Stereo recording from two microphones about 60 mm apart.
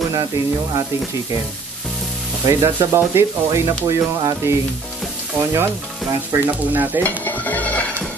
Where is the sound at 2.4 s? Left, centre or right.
Right.